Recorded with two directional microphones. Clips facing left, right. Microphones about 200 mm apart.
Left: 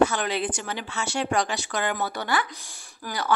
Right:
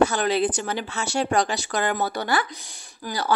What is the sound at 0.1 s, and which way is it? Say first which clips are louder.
Speech: right 5 dB; 35° right (ahead or behind).